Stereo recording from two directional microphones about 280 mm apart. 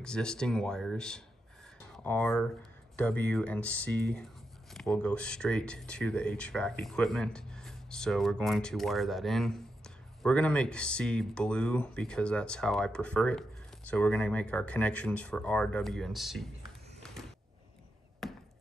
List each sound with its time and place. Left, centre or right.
0.0 s speech: centre
17.0 s a sound: centre
18.2 s chop: centre